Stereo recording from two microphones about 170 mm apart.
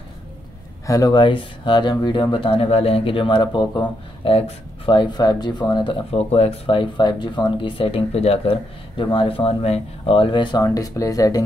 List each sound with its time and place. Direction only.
0.8 s speech: 20° left (ahead or behind)